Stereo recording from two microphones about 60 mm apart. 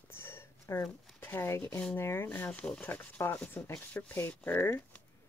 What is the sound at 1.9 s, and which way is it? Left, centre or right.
Speech, left.